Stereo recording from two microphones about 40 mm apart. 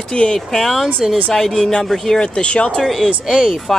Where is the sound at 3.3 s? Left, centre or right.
Right.